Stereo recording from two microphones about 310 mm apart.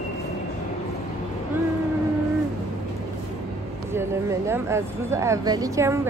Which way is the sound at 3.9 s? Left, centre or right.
Centre.